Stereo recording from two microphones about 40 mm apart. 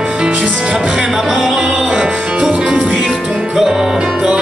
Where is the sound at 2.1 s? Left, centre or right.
Right.